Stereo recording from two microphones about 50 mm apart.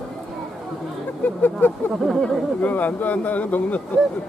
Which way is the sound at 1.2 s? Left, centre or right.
Left.